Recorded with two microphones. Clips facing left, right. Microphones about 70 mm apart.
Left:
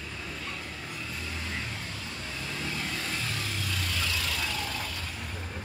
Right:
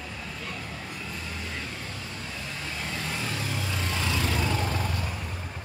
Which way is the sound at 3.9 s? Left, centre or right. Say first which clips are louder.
Right 6 dB; right.